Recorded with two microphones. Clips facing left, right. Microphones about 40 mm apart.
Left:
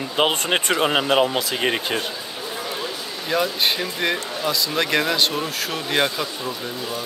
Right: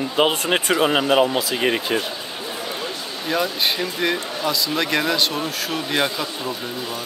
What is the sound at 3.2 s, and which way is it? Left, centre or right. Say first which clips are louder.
Speech: even; centre.